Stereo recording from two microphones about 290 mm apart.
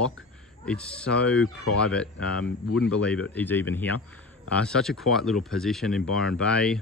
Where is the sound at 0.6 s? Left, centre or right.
Centre.